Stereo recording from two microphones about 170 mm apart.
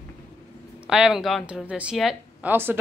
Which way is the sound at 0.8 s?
5° right (ahead or behind).